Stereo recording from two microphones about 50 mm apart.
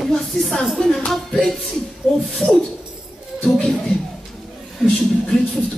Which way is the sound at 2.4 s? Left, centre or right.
Left.